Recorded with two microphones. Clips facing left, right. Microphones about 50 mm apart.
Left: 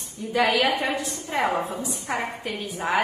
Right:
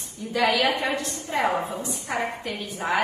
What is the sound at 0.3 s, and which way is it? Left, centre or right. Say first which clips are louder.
A woman's voice: left 1 dB; centre.